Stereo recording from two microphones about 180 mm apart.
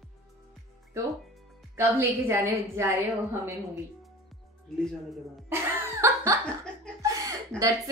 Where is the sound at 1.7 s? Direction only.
15° right (ahead or behind).